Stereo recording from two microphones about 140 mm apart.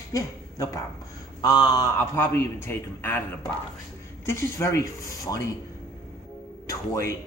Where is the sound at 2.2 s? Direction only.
15° left (ahead or behind).